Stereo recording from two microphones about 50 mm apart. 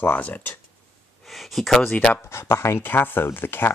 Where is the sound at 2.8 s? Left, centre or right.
Left.